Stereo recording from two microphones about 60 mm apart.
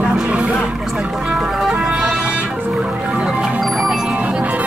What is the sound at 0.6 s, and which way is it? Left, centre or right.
Music, centre.